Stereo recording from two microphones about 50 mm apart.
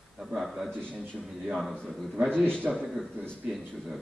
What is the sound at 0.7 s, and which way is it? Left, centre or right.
Speech, left.